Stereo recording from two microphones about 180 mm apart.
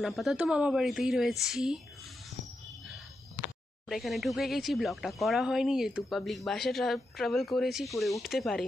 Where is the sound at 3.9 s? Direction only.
Centre (ahead or behind).